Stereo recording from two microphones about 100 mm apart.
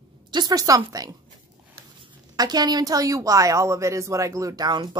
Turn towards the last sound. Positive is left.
turn(degrees=-45)  # may be behind; listen again after turning